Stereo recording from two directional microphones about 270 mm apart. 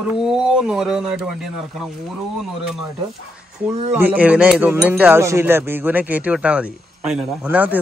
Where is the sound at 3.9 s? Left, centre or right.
Centre.